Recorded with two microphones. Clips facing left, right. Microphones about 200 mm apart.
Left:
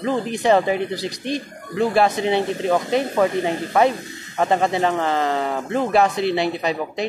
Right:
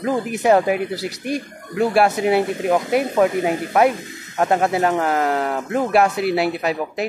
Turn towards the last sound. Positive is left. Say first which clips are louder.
# right 1 dB
turn(degrees=-5)  # may be behind; listen again after turning